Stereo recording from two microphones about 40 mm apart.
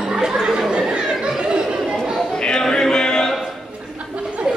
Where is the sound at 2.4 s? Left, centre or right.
Centre.